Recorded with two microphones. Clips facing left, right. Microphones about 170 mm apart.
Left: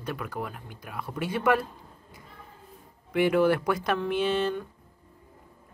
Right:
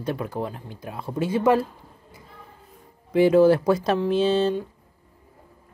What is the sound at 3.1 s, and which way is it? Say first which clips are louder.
Speech: right 6 dB; 30° right (ahead or behind).